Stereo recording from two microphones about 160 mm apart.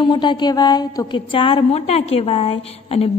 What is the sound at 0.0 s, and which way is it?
A woman's voice, 30° left (ahead or behind).